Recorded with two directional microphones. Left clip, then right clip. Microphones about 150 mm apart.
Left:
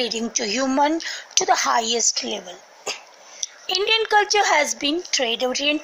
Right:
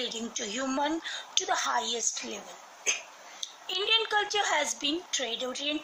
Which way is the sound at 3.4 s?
45° left (ahead or behind).